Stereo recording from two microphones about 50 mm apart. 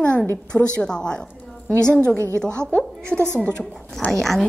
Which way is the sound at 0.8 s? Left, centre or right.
Centre.